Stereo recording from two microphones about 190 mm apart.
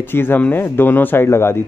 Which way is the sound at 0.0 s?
10° left (ahead or behind).